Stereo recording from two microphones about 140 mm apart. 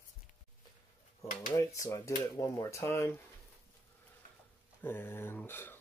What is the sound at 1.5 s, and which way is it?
Speech, 20° left (ahead or behind).